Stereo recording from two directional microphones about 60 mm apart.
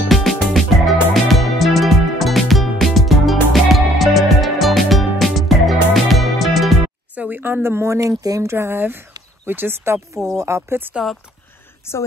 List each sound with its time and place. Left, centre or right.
0.1 s music: centre
7.2 s speech: right
8.5 s speech: right
10.3 s speech: right
11.9 s a woman's voice: left